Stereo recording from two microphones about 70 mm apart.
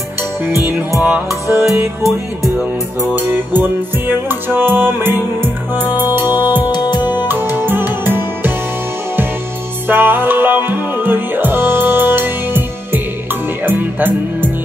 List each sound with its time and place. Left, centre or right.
0.5 s music: right
3.2 s music: right
6.4 s music: left
7.2 s music: right
9.8 s music: right